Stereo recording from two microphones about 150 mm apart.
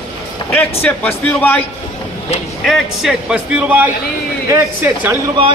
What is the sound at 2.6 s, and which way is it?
Speech, centre (ahead or behind).